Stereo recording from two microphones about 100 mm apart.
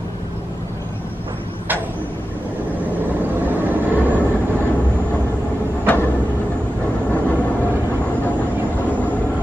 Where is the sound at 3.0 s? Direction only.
20° right (ahead or behind).